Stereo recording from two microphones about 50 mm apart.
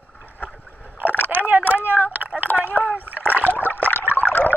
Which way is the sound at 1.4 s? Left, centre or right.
Right.